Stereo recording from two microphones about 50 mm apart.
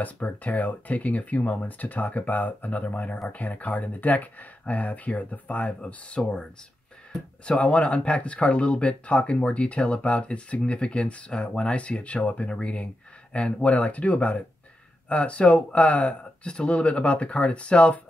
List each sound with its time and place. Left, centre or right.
0.0 s speech: left